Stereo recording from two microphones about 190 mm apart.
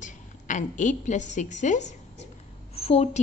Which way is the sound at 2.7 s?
30° left (ahead or behind).